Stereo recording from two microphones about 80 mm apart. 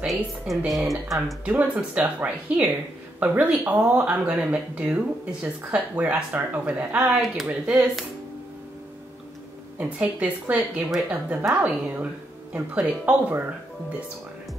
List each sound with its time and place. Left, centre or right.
0.0 s speech: centre
1.4 s speech: centre
9.8 s speech: centre